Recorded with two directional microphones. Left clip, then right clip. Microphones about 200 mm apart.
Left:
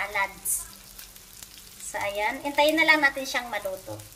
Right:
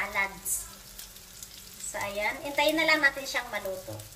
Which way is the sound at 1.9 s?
45° left (ahead or behind).